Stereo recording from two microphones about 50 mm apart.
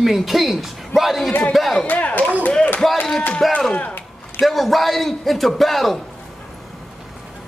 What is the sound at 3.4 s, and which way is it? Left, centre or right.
A man's voice, centre.